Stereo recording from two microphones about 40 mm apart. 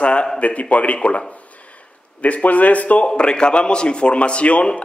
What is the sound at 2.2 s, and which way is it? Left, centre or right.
Speech, left.